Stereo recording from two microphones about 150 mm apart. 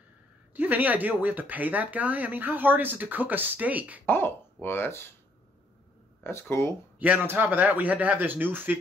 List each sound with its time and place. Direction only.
0.5 s speech: 10° right (ahead or behind)
4.0 s speech: 15° left (ahead or behind)
6.2 s speech: 15° left (ahead or behind)
7.0 s speech: 10° right (ahead or behind)